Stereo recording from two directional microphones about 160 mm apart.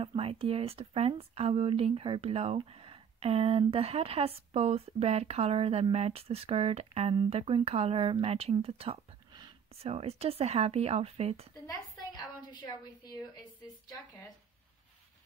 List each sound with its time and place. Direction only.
0.0 s speech: 35° right (ahead or behind)
11.6 s a woman's voice: 25° left (ahead or behind)